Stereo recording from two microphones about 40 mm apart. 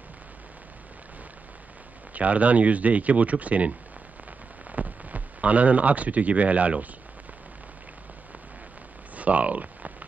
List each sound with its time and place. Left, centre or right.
2.1 s speech: right
4.7 s speech: right
9.1 s a sound: right